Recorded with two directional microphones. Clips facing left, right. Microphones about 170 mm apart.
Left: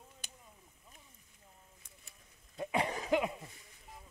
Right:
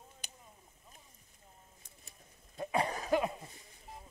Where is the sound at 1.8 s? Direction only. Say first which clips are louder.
Right 2 dB; 35° right (ahead or behind).